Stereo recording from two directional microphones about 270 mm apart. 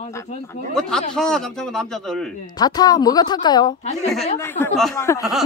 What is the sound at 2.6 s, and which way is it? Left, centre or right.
A woman's voice, centre.